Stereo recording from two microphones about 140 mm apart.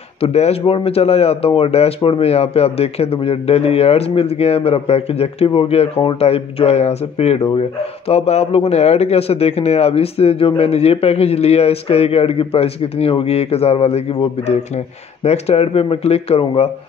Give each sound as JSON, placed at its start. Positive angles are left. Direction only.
{"t": 0.2, "sound": "speech", "side_deg": 50}
{"t": 15.2, "sound": "speech", "side_deg": 50}